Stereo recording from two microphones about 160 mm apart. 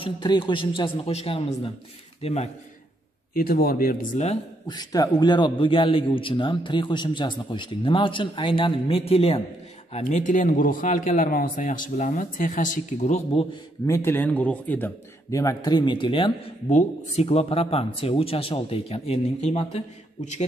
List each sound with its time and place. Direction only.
0.0 s a man's voice: 30° left (ahead or behind)
3.3 s a man's voice: 70° left (ahead or behind); by 4.4 s 50° left (ahead or behind)
4.6 s a man's voice: 25° left (ahead or behind)
10.0 s a man's voice: 55° left (ahead or behind)
13.8 s speech: 15° left (ahead or behind)
15.3 s speech: 20° left (ahead or behind)
16.7 s a man's voice: 40° left (ahead or behind)